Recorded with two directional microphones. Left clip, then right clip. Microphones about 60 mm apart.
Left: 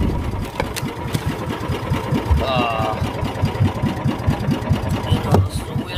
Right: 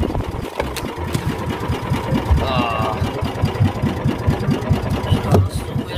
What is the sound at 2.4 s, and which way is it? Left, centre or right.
Sewing machine, left.